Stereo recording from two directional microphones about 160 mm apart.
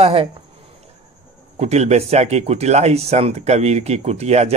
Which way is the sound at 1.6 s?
45° right (ahead or behind).